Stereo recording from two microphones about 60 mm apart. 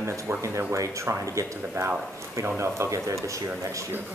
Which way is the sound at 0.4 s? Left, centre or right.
Right.